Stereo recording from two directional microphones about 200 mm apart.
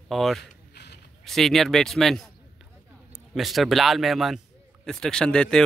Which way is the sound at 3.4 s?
Centre (ahead or behind).